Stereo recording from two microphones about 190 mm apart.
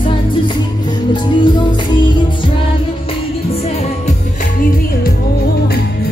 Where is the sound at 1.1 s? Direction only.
25° left (ahead or behind).